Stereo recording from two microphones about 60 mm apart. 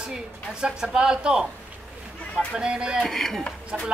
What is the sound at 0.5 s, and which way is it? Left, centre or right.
A man's voice, centre.